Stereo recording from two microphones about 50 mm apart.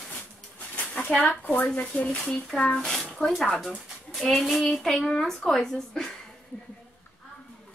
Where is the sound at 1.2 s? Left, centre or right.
Left.